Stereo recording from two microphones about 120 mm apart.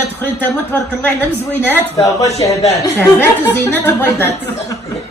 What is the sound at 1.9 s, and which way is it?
Speech, 30° left (ahead or behind).